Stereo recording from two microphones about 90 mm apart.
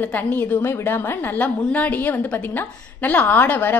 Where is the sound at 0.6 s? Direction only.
30° left (ahead or behind).